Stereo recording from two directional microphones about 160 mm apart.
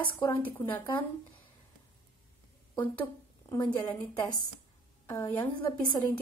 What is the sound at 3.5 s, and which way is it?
A woman's voice, 15° left (ahead or behind).